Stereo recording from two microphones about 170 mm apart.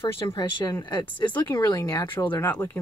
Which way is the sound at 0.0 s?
30° left (ahead or behind).